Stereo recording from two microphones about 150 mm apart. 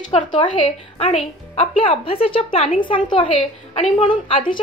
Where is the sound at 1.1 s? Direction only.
50° left (ahead or behind).